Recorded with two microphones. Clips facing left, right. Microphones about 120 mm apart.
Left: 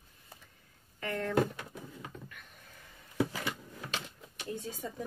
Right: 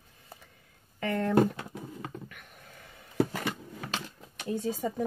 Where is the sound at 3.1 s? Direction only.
60° right (ahead or behind).